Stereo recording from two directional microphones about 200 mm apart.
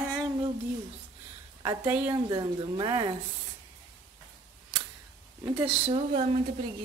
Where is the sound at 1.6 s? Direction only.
20° right (ahead or behind).